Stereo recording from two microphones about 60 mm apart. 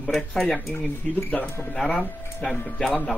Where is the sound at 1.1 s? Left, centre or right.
Centre.